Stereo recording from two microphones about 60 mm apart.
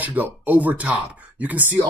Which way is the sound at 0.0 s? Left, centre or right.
Right.